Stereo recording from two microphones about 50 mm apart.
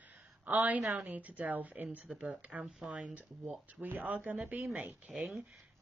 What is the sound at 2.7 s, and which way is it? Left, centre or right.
Speech, centre.